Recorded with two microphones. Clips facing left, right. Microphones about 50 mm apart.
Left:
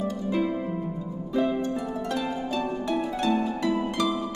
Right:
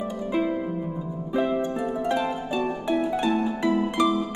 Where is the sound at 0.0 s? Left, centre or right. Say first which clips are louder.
Right 1 dB; centre.